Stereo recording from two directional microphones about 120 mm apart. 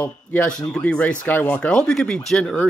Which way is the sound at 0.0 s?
10° left (ahead or behind).